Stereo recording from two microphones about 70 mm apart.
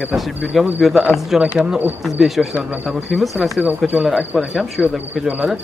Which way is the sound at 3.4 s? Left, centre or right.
Right.